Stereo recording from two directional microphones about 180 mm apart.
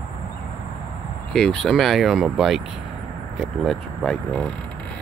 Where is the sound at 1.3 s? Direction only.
5° left (ahead or behind).